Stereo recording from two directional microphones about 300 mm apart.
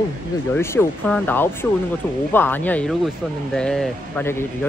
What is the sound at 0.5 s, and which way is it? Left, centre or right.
Speech, centre.